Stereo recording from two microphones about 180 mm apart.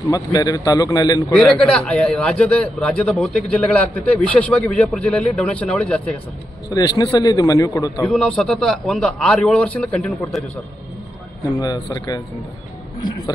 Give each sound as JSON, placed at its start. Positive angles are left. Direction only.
{"t": 0.1, "sound": "a man's voice", "side_deg": 20}
{"t": 1.3, "sound": "a man's voice", "side_deg": 5}
{"t": 6.7, "sound": "a man's voice", "side_deg": 20}
{"t": 8.0, "sound": "a man's voice", "side_deg": 0}
{"t": 11.6, "sound": "a man's voice", "side_deg": 20}